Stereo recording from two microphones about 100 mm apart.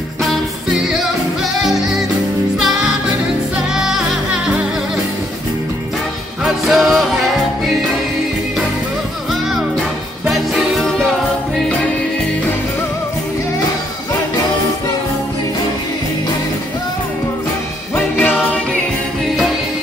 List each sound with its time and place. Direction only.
0.2 s music: centre (ahead or behind)
3.7 s music: 5° right (ahead or behind)
6.4 s music: centre (ahead or behind)
9.3 s music: centre (ahead or behind)
17.9 s music: 20° left (ahead or behind)